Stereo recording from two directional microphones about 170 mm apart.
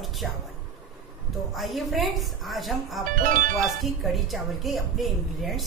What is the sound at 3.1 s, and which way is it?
Speech, 55° right (ahead or behind).